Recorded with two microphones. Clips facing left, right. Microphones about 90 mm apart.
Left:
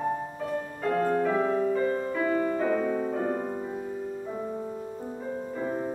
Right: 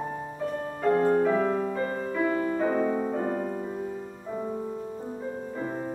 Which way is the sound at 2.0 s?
5° right (ahead or behind).